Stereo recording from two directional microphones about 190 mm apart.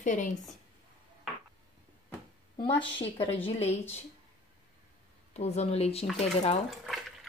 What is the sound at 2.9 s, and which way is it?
A woman's voice, 30° left (ahead or behind).